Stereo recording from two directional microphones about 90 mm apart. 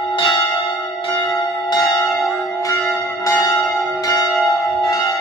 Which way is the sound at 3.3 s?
35° left (ahead or behind).